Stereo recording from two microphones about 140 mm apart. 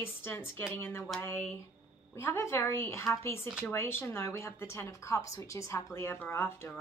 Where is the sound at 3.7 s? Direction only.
15° left (ahead or behind).